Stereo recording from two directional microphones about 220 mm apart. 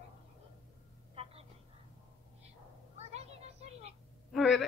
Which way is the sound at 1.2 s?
25° right (ahead or behind).